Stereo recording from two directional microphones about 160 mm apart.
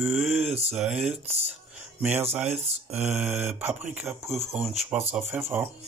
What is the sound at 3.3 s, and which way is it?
Speech, 10° right (ahead or behind).